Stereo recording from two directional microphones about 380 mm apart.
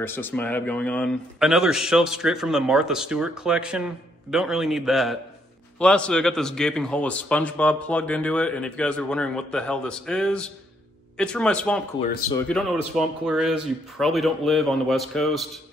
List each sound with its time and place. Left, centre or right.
0.0 s a man's voice: centre
12.0 s speech: centre
12.4 s a man's voice: centre